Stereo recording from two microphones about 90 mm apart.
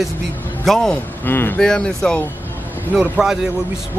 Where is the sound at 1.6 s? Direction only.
5° left (ahead or behind).